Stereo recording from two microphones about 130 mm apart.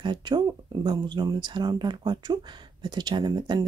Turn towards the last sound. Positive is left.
turn(degrees=-35)  # may be behind; listen again after turning